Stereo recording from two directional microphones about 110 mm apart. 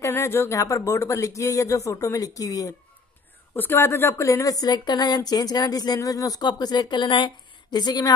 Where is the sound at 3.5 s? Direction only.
20° left (ahead or behind).